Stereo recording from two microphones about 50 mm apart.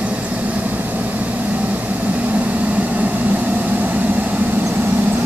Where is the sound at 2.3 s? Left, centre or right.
Right.